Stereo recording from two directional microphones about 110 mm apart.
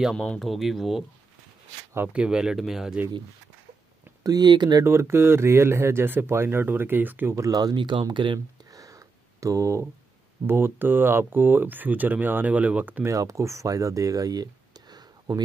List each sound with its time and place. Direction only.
0.1 s speech: 5° left (ahead or behind)
2.1 s speech: 5° right (ahead or behind)
4.2 s speech: 35° right (ahead or behind)
4.8 s speech: 25° right (ahead or behind); by 8.4 s 45° right (ahead or behind)
8.7 s a sound: 30° right (ahead or behind)
10.4 s speech: 20° right (ahead or behind)
13.1 s speech: 30° right (ahead or behind)